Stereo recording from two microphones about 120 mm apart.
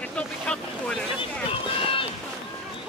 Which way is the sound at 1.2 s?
45° left (ahead or behind).